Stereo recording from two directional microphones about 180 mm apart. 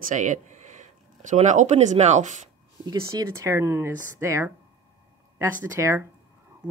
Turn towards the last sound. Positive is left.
turn(degrees=-15)  # may be behind; listen again after turning